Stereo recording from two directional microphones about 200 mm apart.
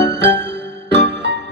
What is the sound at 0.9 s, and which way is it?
Music, 60° right (ahead or behind).